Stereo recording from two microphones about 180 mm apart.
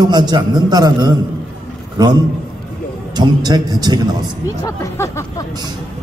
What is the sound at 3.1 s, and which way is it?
Speech, 20° right (ahead or behind).